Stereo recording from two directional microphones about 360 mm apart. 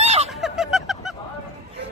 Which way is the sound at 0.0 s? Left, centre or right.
Centre.